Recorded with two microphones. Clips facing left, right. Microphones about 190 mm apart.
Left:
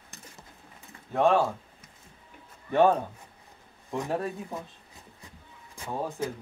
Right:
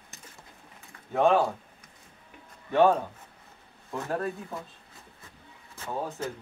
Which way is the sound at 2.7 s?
15° left (ahead or behind).